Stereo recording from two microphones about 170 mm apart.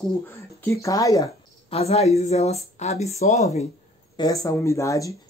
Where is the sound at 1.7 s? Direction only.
35° left (ahead or behind).